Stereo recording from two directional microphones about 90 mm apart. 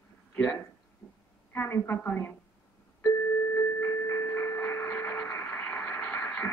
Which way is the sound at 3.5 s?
25° left (ahead or behind).